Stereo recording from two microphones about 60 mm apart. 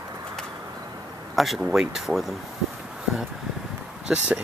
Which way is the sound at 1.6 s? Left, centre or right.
Centre.